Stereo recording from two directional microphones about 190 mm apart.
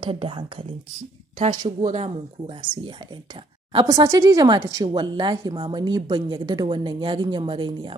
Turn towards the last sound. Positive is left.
turn(degrees=-25)  # may be behind; listen again after turning